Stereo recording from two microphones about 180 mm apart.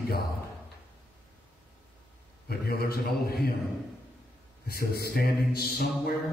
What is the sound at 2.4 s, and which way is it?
A man's voice, 60° left (ahead or behind).